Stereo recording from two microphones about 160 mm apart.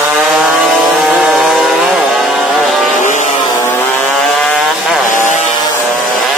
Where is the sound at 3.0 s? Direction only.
50° left (ahead or behind).